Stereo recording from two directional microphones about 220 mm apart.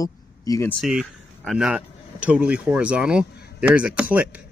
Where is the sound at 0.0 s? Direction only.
15° left (ahead or behind).